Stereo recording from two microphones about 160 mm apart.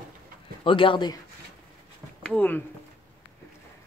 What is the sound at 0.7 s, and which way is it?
Speech, 30° left (ahead or behind).